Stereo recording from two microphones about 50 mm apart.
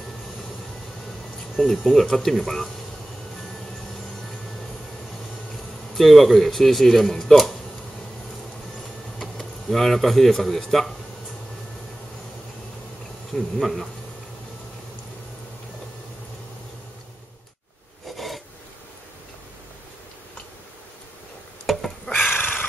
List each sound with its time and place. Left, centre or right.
1.6 s speech: centre
5.9 s speech: centre
9.2 s speech: centre
13.3 s speech: centre
18.0 s filing: centre
21.6 s a sound: centre
22.1 s a sound: left